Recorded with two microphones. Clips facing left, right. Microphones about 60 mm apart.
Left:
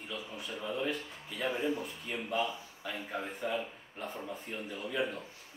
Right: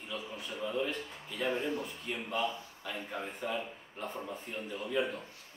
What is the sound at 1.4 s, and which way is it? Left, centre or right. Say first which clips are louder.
A man's voice: even; centre.